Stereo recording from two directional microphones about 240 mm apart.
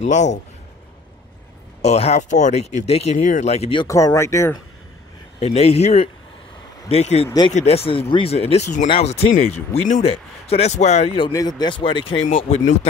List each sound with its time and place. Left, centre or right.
0.0 s speech: left
1.8 s speech: left
3.8 s speech: centre
5.4 s speech: left